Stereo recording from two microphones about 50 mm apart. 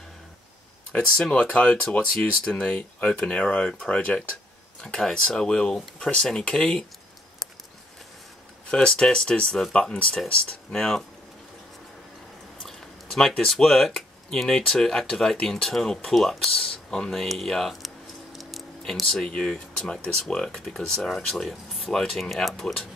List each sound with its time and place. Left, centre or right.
0.9 s speech: left
4.1 s speech: centre
8.8 s speech: centre
10.4 s speech: centre
12.5 s a sound: centre
13.5 s speech: centre